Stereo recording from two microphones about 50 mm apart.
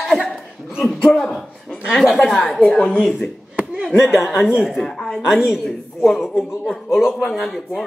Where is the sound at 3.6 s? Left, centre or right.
Centre.